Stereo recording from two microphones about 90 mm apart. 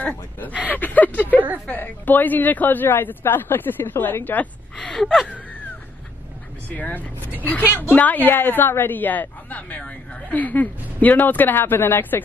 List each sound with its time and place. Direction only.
0.0 s a woman's voice: 20° left (ahead or behind)
4.7 s gasp: 5° left (ahead or behind)
6.7 s a woman's voice: 20° left (ahead or behind)